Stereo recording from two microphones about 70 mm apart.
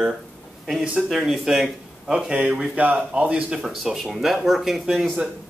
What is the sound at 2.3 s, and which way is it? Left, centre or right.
Speech, centre.